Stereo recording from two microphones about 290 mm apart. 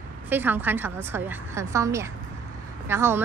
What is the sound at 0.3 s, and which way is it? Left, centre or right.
A woman's voice, centre.